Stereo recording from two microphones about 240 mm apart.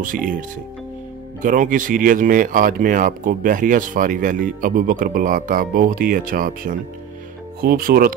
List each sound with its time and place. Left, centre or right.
0.0 s speech: right